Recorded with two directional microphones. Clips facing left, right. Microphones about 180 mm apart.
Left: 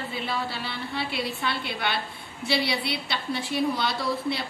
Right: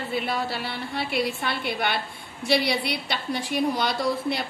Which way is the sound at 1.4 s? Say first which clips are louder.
Right 2 dB; 50° right (ahead or behind).